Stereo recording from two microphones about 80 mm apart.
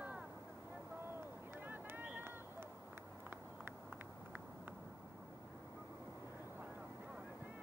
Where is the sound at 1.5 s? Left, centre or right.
Right.